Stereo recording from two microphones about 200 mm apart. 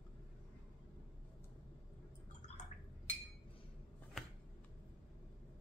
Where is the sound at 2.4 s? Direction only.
35° left (ahead or behind).